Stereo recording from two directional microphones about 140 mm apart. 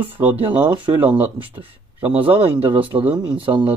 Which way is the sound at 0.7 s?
35° right (ahead or behind).